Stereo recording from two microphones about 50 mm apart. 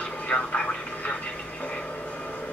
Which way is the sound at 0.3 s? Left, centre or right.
Left.